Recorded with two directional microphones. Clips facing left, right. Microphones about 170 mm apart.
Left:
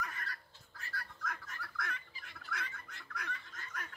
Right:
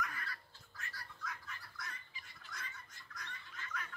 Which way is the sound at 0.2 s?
40° left (ahead or behind).